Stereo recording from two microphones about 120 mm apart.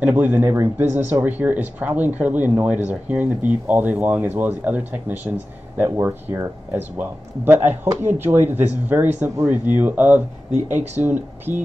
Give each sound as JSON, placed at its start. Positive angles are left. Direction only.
{"t": 0.0, "sound": "speech", "side_deg": -15}
{"t": 10.5, "sound": "speech", "side_deg": -75}
{"t": 11.0, "sound": "speech", "side_deg": -15}